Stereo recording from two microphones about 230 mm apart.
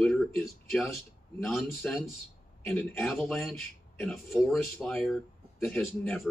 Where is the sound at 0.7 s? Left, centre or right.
Centre.